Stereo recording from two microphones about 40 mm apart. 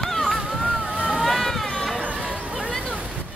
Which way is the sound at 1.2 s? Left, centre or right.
Centre.